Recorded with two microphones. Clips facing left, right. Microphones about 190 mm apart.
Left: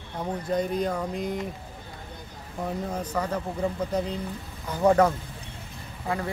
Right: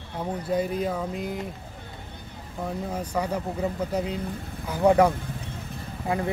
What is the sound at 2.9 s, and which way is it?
Speech, 10° right (ahead or behind).